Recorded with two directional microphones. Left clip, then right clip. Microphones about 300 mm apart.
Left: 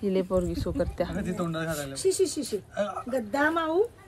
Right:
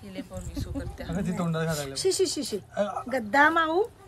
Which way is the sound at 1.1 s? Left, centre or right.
Right.